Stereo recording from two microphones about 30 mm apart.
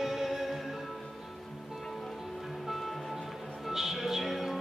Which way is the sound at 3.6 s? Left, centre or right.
Centre.